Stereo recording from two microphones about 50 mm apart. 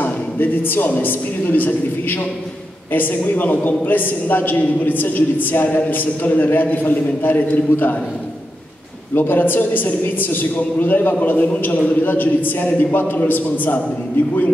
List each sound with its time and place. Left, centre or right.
0.0 s a sound: left
1.0 s a man's voice: left
9.1 s a man's voice: left